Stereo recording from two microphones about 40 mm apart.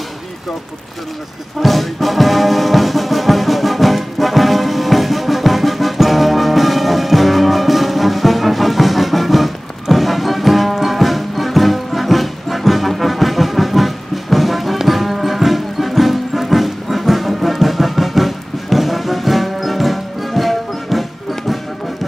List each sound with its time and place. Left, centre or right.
1.6 s brass instrument: centre
14.8 s music: centre